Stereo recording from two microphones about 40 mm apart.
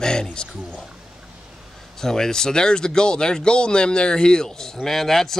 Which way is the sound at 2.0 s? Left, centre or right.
Centre.